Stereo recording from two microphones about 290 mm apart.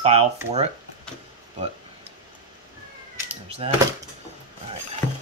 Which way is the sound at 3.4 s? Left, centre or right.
Right.